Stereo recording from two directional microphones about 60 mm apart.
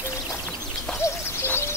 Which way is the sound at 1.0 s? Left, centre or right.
Left.